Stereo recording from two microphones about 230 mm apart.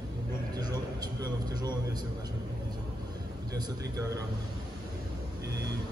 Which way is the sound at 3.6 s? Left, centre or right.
Centre.